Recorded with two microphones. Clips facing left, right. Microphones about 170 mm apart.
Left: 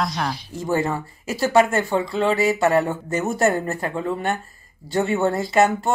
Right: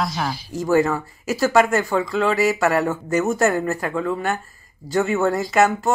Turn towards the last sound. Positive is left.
turn(degrees=30)  # may be behind; listen again after turning